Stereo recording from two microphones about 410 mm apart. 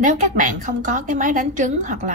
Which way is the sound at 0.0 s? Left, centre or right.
Centre.